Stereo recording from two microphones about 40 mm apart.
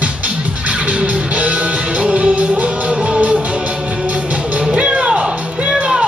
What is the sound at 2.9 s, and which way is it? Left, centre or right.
Music, right.